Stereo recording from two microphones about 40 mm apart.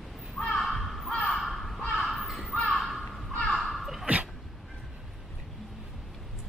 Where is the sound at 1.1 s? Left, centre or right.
Centre.